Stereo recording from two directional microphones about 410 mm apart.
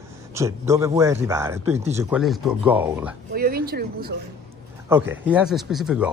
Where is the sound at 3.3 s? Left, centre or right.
Right.